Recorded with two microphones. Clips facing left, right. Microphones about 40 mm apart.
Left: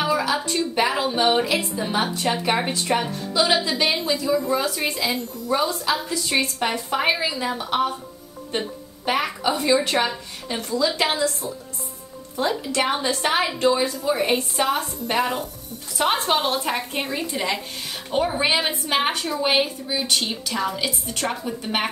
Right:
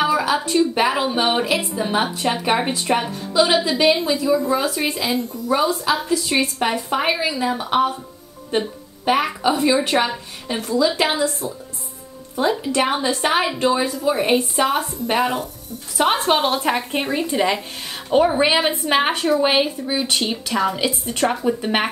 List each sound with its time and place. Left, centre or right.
0.2 s a woman's voice: centre
7.5 s a woman's voice: right; by 15.4 s centre
16.3 s a woman's voice: centre
18.7 s a woman's voice: right